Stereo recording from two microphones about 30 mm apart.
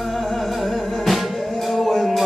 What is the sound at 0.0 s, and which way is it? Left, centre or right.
Music, centre.